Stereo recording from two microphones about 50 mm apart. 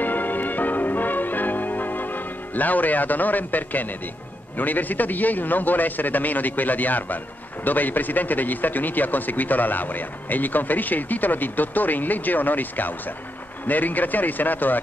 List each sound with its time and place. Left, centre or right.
0.0 s music: left
4.6 s speech: left